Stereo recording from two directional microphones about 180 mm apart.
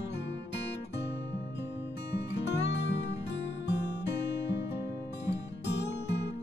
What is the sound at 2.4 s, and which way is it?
Music, 75° left (ahead or behind).